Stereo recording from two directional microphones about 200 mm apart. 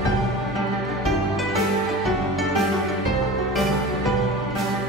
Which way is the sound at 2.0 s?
Centre (ahead or behind).